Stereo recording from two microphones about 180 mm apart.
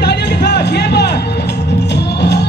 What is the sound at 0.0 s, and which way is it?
Music, 70° left (ahead or behind).